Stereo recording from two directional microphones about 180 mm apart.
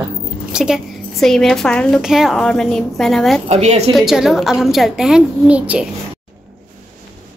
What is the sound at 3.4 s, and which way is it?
Speech, 35° right (ahead or behind).